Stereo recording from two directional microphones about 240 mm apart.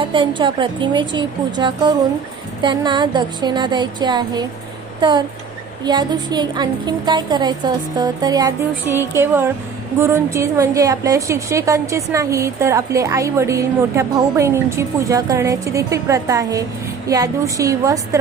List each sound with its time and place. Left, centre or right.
0.0 s a woman's voice: centre
5.9 s a woman's voice: centre